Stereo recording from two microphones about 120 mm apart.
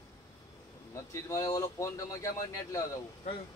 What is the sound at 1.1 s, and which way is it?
Speech, 25° left (ahead or behind).